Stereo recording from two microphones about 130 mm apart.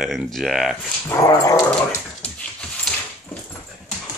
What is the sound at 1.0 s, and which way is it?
Dog, 25° left (ahead or behind).